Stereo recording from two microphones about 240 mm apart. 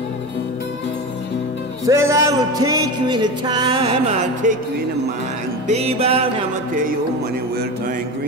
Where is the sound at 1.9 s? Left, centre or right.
Centre; by 4.6 s right.